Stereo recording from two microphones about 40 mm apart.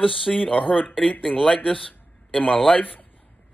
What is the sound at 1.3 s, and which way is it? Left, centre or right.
Speech, centre.